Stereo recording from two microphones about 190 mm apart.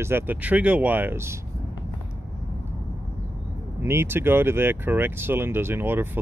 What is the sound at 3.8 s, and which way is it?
Speech, 15° right (ahead or behind).